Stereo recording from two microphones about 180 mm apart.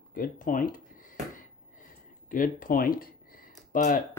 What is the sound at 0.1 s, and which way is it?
Speech, 50° left (ahead or behind).